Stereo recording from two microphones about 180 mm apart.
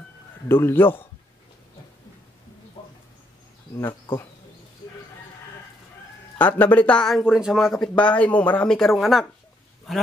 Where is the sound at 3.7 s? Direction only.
15° left (ahead or behind).